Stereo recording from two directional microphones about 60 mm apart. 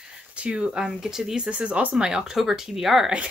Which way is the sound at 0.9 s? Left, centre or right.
Centre.